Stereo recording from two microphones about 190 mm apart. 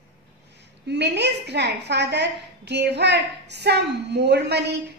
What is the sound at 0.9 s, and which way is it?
A woman's voice, 65° right (ahead or behind).